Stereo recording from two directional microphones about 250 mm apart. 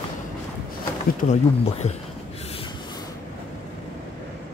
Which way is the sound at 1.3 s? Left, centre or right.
Left.